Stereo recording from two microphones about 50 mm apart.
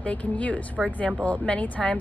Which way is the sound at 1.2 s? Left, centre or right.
Left.